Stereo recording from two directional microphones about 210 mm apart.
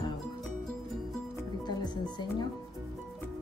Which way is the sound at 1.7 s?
20° left (ahead or behind).